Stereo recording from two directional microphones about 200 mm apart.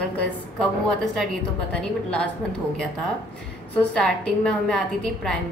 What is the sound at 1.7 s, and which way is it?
Speech, 5° left (ahead or behind).